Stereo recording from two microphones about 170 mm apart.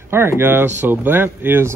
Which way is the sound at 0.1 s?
15° right (ahead or behind).